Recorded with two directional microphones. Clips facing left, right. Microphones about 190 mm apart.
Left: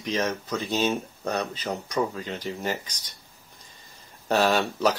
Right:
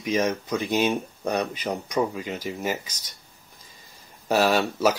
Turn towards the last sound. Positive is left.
turn(degrees=-10)  # may be behind; listen again after turning